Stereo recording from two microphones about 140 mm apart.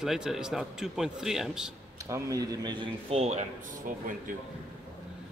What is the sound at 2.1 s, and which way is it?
Speech, 20° right (ahead or behind).